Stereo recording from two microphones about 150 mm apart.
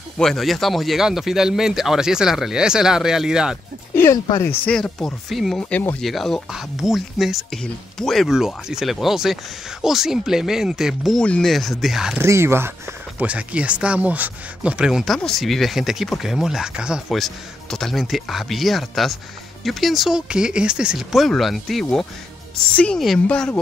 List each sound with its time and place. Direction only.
0.2 s speech: centre (ahead or behind)
3.9 s a sound: 15° left (ahead or behind)
4.4 s speech: 10° left (ahead or behind)
12.2 s speech: 15° right (ahead or behind); by 23.6 s 10° left (ahead or behind)